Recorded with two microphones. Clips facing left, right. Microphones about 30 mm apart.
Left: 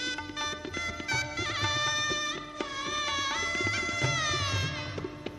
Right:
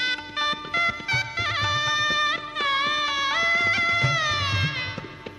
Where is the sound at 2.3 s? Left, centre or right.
Right.